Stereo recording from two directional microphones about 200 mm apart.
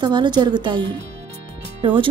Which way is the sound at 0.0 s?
20° right (ahead or behind).